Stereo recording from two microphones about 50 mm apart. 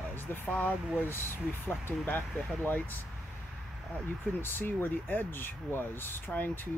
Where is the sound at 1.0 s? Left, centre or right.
Left.